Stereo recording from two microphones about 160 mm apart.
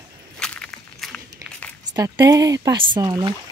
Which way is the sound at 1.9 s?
20° right (ahead or behind).